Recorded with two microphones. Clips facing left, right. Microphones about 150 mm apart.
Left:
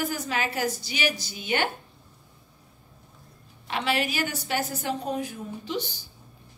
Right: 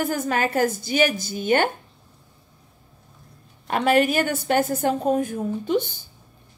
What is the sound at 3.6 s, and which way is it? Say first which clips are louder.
A woman's voice: right 8 dB; 50° right (ahead or behind).